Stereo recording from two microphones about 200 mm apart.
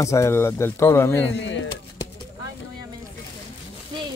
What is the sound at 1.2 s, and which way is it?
Speech, 65° left (ahead or behind).